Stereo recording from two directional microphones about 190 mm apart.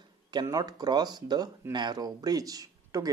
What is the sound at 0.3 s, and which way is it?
Speech, 20° right (ahead or behind).